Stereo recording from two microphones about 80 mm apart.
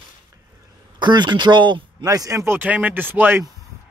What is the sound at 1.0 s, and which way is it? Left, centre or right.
Speech, right.